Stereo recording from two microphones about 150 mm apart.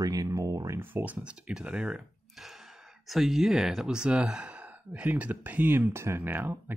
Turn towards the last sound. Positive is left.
turn(degrees=-15)  # may be behind; listen again after turning